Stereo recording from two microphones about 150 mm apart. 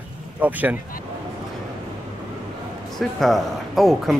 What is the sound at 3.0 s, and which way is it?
A man's voice, centre (ahead or behind).